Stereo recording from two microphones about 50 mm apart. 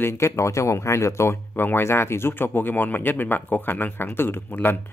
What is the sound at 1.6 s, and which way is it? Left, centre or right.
Speech, left.